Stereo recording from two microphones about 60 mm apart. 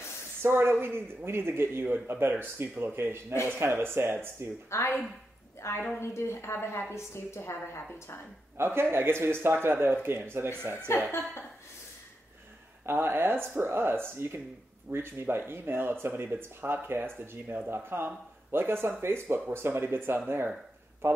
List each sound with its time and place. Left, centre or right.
0.4 s speech: right
4.6 s a woman's voice: left
8.5 s speech: right
12.8 s speech: right